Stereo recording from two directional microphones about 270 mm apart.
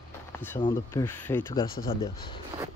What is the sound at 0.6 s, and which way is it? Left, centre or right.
Speech, centre.